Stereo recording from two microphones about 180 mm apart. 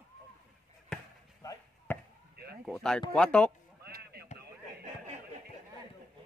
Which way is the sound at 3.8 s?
60° right (ahead or behind).